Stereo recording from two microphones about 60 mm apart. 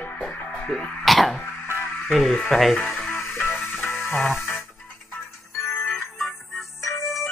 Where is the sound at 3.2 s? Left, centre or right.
Left.